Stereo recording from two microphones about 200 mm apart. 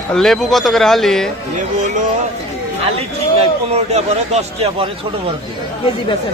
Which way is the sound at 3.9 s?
30° right (ahead or behind).